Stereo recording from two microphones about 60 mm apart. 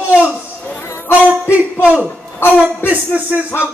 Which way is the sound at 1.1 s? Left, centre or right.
Right.